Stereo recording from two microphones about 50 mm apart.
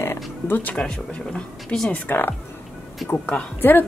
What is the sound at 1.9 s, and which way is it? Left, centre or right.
Speech, left.